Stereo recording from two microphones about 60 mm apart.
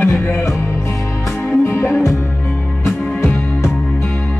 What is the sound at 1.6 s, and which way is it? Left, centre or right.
Music, left.